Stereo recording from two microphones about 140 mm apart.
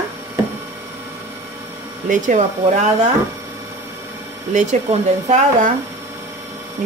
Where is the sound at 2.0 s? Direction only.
65° right (ahead or behind).